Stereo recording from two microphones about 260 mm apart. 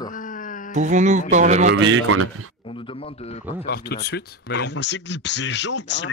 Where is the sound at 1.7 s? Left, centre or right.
Right.